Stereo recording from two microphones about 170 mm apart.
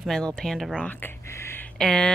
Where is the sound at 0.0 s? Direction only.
5° left (ahead or behind).